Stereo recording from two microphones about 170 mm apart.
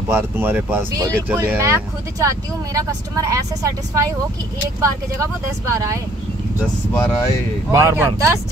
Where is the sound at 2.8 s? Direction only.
20° right (ahead or behind).